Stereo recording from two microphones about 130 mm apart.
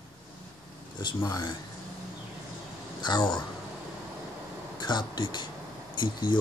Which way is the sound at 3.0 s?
35° left (ahead or behind).